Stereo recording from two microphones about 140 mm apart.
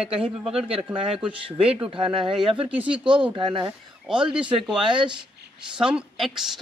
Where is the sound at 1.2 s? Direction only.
40° right (ahead or behind).